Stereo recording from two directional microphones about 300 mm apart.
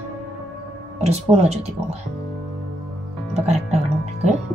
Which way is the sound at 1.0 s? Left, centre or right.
Right.